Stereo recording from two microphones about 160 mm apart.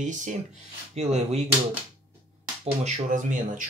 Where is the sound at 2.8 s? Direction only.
50° right (ahead or behind).